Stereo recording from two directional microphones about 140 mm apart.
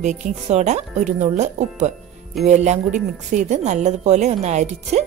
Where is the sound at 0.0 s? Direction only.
55° right (ahead or behind).